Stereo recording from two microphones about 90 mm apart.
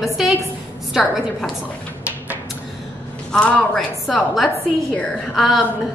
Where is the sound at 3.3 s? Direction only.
5° left (ahead or behind).